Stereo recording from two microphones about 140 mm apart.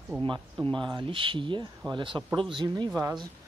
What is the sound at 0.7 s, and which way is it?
Speech, 35° right (ahead or behind).